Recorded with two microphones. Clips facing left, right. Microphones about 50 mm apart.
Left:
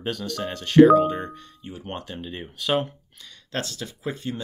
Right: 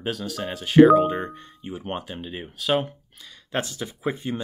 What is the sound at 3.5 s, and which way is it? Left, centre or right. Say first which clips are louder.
Speech: right 2 dB; centre.